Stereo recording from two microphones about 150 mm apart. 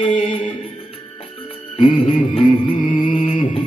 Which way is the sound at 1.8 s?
40° left (ahead or behind).